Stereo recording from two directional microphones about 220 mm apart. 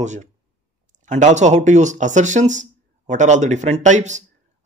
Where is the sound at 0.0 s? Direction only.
35° right (ahead or behind).